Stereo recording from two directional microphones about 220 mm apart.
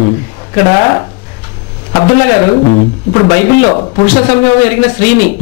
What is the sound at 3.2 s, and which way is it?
A man's voice, 15° left (ahead or behind).